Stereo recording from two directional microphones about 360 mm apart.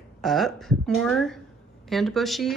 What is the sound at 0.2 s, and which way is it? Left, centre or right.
Speech, centre.